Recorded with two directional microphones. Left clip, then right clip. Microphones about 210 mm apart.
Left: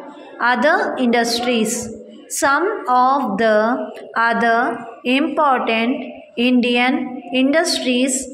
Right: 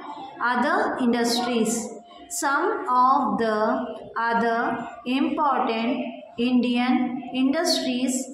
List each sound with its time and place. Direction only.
0.4 s a woman's voice: 30° left (ahead or behind)